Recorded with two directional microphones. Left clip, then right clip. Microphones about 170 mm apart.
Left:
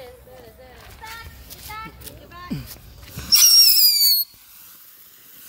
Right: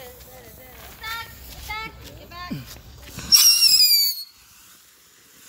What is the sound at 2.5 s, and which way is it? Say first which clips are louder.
Music: left 2 dB; 25° left (ahead or behind).